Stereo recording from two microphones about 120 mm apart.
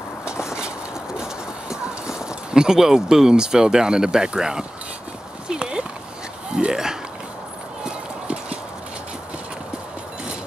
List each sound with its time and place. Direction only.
0.2 s vehicle: 5° right (ahead or behind)
1.1 s clip-clop: 5° right (ahead or behind)
5.5 s horse: 5° right (ahead or behind)
6.5 s a sound: 5° right (ahead or behind)
7.8 s clip-clop: 10° right (ahead or behind)